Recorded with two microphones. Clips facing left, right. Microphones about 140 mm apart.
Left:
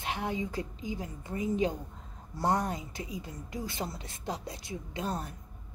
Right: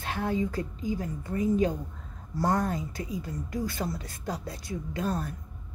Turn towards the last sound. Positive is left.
turn(degrees=20)  # may be behind; listen again after turning